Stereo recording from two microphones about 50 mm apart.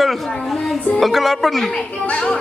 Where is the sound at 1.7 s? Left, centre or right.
Left.